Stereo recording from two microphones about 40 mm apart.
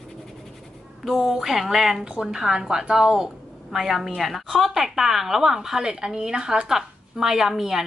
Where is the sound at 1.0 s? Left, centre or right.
Centre.